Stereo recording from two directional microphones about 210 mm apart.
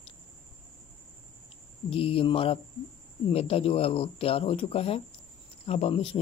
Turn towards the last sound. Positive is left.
turn(degrees=25)  # may be behind; listen again after turning